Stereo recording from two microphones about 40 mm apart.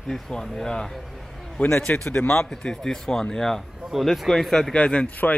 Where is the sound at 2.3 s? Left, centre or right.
Centre.